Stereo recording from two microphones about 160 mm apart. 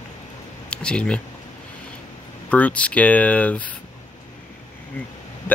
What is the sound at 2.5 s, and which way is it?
Speech, 10° left (ahead or behind).